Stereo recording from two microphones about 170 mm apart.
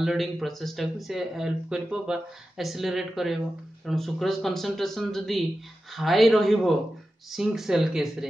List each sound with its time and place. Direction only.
0.0 s speech: centre (ahead or behind)